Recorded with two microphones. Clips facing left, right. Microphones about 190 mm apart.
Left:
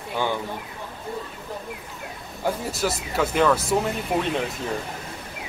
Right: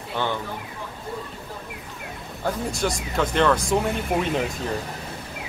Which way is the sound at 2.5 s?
5° left (ahead or behind).